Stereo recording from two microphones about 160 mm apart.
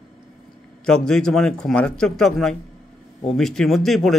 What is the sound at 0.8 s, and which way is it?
A man's voice, 5° left (ahead or behind).